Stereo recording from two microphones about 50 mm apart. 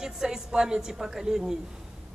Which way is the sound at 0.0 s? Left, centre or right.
Centre.